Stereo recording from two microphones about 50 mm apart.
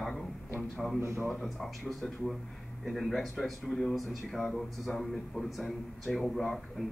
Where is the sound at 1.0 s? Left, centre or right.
Right.